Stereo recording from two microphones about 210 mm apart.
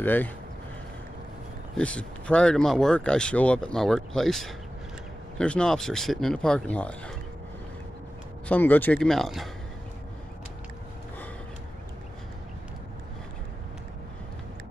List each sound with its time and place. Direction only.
0.0 s speech: 10° left (ahead or behind)
1.8 s speech: 5° left (ahead or behind)
8.5 s speech: 10° left (ahead or behind)